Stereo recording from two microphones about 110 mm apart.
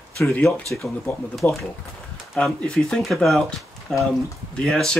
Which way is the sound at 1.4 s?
15° left (ahead or behind).